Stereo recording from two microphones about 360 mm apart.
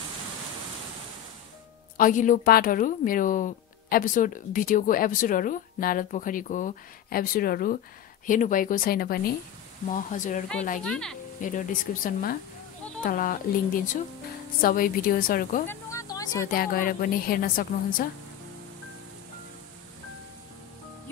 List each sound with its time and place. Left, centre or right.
2.0 s a woman's voice: left
10.8 s speech: centre
11.4 s a woman's voice: left
14.6 s a woman's voice: left
15.6 s a sound: centre
16.4 s a woman's voice: left